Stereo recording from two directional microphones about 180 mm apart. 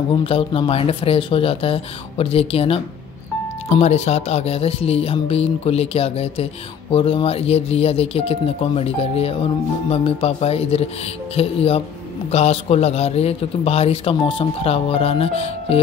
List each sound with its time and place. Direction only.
0.1 s speech: 30° left (ahead or behind)